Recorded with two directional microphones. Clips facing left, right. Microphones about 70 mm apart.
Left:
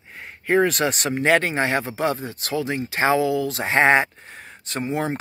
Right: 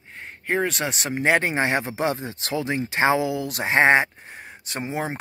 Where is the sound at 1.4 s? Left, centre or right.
Right.